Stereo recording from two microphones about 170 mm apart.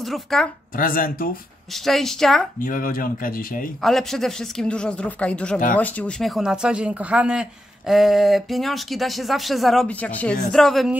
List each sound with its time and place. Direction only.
0.0 s a woman's voice: centre (ahead or behind)
0.7 s speech: 55° left (ahead or behind)
1.7 s speech: centre (ahead or behind)
2.6 s speech: 55° left (ahead or behind)
3.8 s speech: centre (ahead or behind)